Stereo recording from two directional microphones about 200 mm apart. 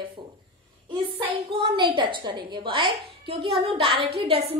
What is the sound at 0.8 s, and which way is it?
A woman's voice, 25° right (ahead or behind).